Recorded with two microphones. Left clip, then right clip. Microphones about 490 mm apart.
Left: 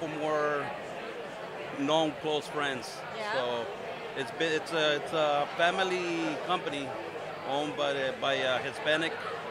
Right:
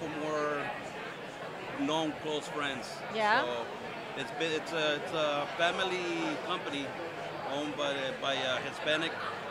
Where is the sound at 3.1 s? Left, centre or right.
Right.